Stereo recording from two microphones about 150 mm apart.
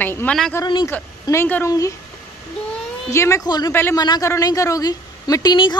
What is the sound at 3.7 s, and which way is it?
Speech, 15° left (ahead or behind).